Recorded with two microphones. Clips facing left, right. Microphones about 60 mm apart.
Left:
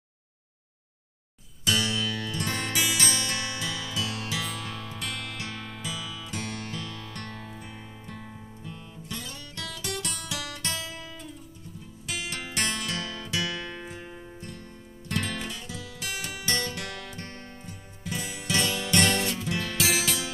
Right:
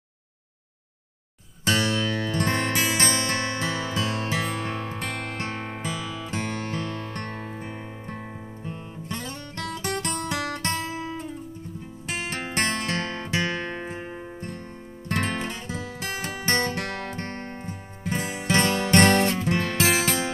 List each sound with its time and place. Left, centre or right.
1.6 s music: right